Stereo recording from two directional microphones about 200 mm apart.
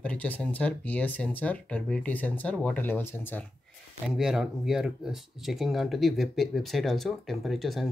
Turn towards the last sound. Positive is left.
turn(degrees=0)  # may be behind; listen again after turning